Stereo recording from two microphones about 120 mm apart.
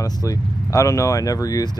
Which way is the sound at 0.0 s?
30° left (ahead or behind).